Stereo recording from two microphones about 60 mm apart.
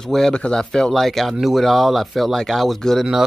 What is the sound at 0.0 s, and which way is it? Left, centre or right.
Speech, centre.